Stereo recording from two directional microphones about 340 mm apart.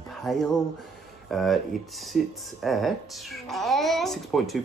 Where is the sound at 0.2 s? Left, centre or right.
Centre.